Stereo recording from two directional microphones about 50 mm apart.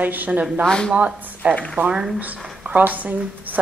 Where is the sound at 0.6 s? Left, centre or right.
Centre.